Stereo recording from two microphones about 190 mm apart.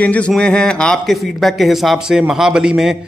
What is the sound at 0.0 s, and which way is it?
A man's voice, 5° left (ahead or behind).